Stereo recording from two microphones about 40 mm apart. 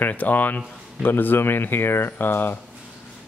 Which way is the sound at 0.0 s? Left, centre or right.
Left.